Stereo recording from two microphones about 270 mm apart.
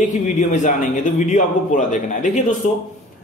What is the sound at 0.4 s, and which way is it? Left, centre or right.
A man's voice, left.